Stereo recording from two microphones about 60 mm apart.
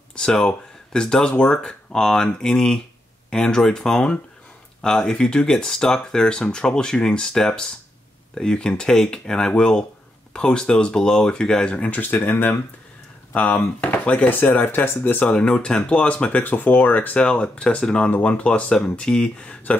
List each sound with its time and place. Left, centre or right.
0.1 s speech: centre; by 15.3 s left
15.3 s speech: centre